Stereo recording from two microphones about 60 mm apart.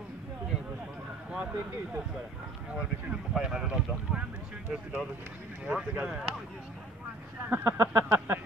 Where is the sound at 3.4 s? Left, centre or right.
Centre.